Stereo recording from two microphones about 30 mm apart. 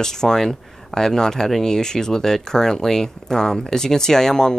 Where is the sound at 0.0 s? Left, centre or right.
Centre.